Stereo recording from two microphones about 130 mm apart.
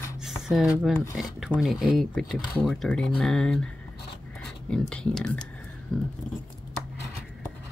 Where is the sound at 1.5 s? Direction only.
Centre (ahead or behind).